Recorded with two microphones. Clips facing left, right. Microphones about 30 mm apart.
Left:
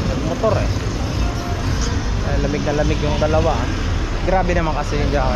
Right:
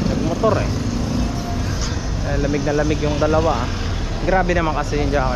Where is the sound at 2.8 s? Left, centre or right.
Centre.